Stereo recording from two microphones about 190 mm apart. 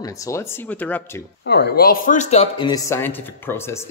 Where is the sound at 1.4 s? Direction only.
60° left (ahead or behind); by 2.7 s 30° left (ahead or behind).